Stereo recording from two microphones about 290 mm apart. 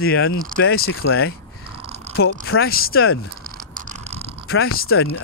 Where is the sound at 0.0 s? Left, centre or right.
Left.